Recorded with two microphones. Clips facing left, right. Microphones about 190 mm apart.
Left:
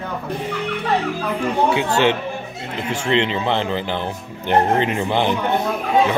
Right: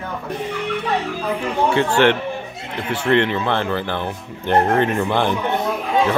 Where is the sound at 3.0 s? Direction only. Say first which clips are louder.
Right 2 dB; 15° left (ahead or behind).